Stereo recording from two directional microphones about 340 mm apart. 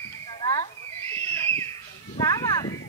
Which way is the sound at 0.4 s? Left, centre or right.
Centre.